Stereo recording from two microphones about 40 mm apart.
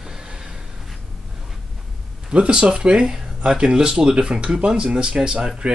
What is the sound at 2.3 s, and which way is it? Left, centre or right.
Speech, right.